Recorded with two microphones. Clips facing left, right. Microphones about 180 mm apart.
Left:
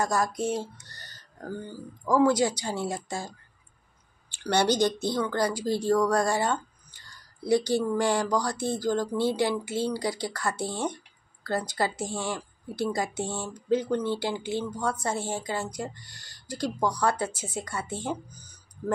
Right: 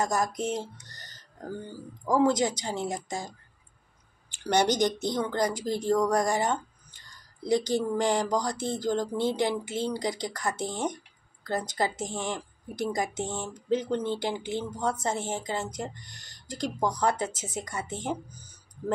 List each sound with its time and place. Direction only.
0.0 s speech: 20° right (ahead or behind)